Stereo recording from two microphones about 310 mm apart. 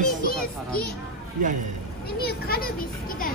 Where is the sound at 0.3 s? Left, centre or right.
Left.